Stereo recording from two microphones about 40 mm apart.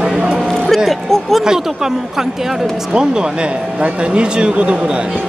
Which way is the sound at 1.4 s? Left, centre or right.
Centre.